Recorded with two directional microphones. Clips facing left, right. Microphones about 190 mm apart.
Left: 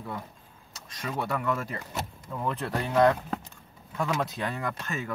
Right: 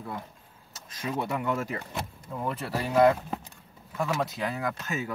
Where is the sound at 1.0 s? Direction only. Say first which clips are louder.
Right 1 dB; 20° right (ahead or behind).